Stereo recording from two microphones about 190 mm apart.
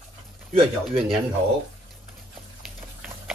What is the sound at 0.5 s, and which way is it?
Speech, 30° right (ahead or behind).